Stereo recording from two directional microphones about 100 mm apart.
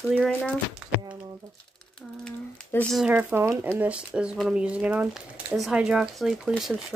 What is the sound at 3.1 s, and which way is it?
Speech, 15° right (ahead or behind).